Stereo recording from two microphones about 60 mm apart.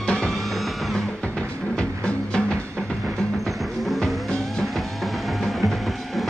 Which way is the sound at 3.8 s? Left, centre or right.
Centre.